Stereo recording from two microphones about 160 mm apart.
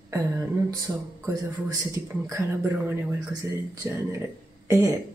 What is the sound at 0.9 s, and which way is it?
A man's voice, 20° right (ahead or behind).